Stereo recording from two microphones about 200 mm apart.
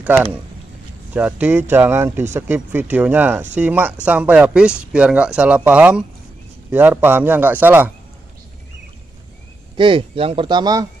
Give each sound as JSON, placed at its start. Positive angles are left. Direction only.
{"t": 0.0, "sound": "a man's voice", "side_deg": -10}
{"t": 9.8, "sound": "speech", "side_deg": -25}